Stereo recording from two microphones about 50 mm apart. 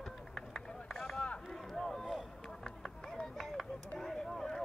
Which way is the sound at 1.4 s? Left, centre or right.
Centre.